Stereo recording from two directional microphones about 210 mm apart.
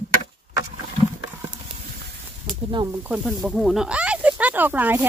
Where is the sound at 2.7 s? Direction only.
20° right (ahead or behind).